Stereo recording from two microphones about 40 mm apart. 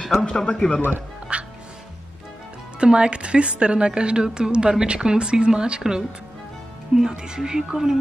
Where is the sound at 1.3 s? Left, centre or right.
Right.